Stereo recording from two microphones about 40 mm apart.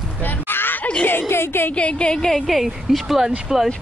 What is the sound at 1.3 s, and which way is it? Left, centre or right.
Speech, left.